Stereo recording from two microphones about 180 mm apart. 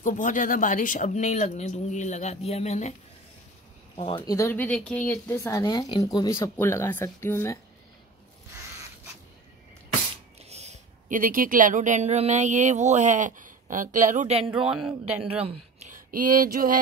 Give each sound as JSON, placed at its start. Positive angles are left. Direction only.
{"t": 0.0, "sound": "speech", "side_deg": 45}
{"t": 3.9, "sound": "speech", "side_deg": 35}
{"t": 4.3, "sound": "speech", "side_deg": 15}
{"t": 10.4, "sound": "a woman's voice", "side_deg": -35}